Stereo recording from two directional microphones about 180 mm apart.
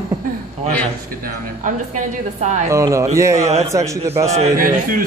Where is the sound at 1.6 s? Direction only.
45° right (ahead or behind).